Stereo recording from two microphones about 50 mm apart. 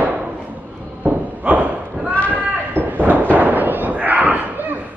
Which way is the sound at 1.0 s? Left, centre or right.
Right.